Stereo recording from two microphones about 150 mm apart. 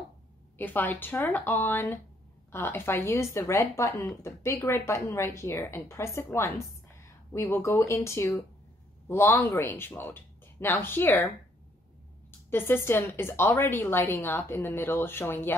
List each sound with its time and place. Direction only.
0.6 s a woman's voice: 10° left (ahead or behind)
12.3 s a woman's voice: 15° left (ahead or behind)